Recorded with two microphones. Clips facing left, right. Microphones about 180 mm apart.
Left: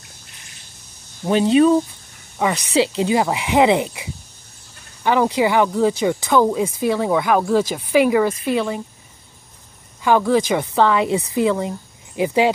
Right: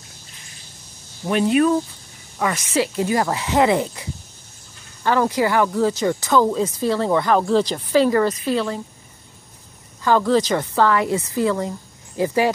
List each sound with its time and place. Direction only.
1.2 s speech: 25° left (ahead or behind)
5.0 s speech: 15° left (ahead or behind)
10.0 s speech: 10° left (ahead or behind)